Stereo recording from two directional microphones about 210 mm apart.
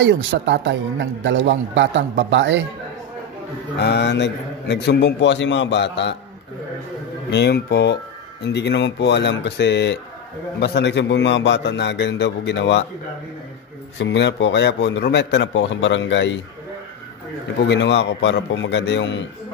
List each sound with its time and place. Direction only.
0.0 s speech: 55° right (ahead or behind)
3.7 s a man's voice: 55° left (ahead or behind)
7.2 s a man's voice: 55° left (ahead or behind)
13.9 s a man's voice: 60° left (ahead or behind)
17.6 s a man's voice: 55° left (ahead or behind)